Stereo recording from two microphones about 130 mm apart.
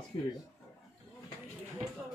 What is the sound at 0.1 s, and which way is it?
Speech, 40° left (ahead or behind).